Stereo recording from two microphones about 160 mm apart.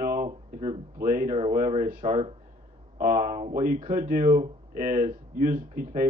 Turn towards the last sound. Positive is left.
turn(degrees=-50)  # may be behind; listen again after turning